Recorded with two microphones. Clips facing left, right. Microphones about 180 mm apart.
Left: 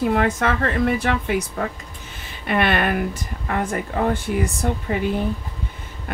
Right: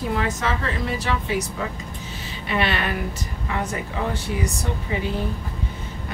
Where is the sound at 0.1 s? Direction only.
55° left (ahead or behind).